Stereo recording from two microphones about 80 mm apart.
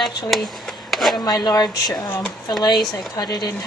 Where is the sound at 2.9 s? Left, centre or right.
Left.